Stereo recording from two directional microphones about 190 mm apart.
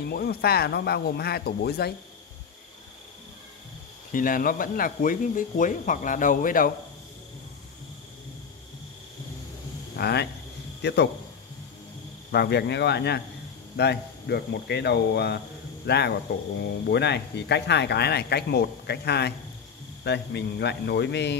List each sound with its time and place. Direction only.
0.0 s speech: 55° left (ahead or behind)
4.1 s speech: 45° left (ahead or behind)
9.9 s speech: 55° left (ahead or behind)
12.3 s speech: 60° left (ahead or behind)